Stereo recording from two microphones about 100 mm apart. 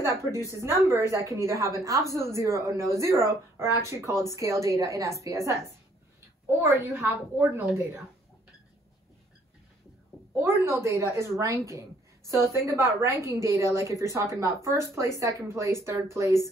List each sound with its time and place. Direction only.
0.0 s a woman's voice: 25° right (ahead or behind)
6.6 s a woman's voice: 25° right (ahead or behind)
10.4 s a woman's voice: 25° right (ahead or behind)